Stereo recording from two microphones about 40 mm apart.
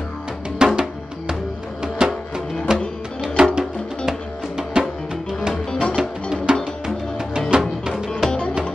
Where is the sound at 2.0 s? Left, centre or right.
Centre.